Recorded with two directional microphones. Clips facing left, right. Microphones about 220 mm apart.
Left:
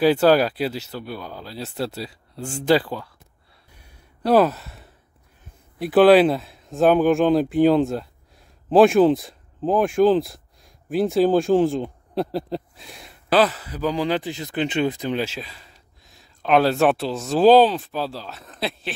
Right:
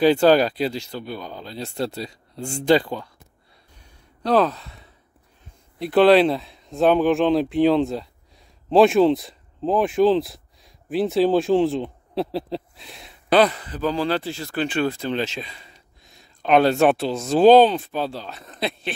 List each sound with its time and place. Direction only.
0.0 s speech: 5° left (ahead or behind)
4.2 s speech: 5° left (ahead or behind)